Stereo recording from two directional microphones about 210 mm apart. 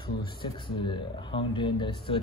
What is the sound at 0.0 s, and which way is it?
Speech, 20° left (ahead or behind).